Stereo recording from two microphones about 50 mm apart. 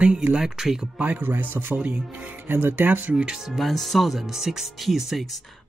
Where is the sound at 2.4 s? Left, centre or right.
Right.